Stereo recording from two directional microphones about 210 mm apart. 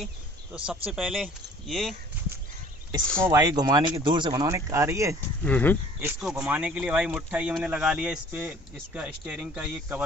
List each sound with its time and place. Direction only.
0.0 s speech: 5° right (ahead or behind)
3.3 s speech: 20° right (ahead or behind)
5.4 s speech: 10° left (ahead or behind)
6.0 s speech: 5° right (ahead or behind)